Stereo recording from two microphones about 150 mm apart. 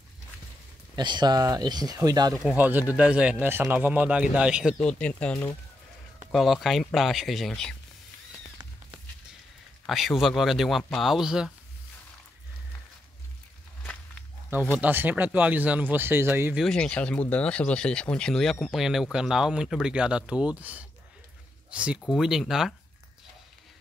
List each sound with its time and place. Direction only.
0.9 s speech: 30° right (ahead or behind)
2.5 s speech: 10° right (ahead or behind)
4.7 s speech: 5° left (ahead or behind)
9.8 s speech: centre (ahead or behind)
14.8 s speech: 10° right (ahead or behind)
16.6 s speech: 5° left (ahead or behind)